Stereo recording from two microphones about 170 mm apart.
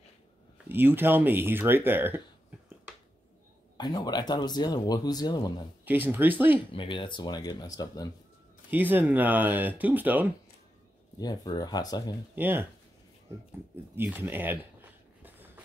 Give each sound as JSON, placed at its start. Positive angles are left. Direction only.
{"t": 0.7, "sound": "speech", "side_deg": -10}
{"t": 3.7, "sound": "speech", "side_deg": 25}
{"t": 5.9, "sound": "speech", "side_deg": -10}
{"t": 6.7, "sound": "speech", "side_deg": 30}
{"t": 8.6, "sound": "speech", "side_deg": -10}
{"t": 11.1, "sound": "speech", "side_deg": 25}
{"t": 12.4, "sound": "speech", "side_deg": -10}
{"t": 13.9, "sound": "a sound", "side_deg": -10}